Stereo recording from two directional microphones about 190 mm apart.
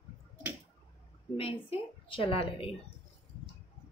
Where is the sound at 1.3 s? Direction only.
30° left (ahead or behind).